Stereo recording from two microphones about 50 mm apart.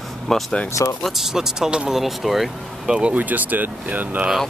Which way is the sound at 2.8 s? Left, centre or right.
Centre.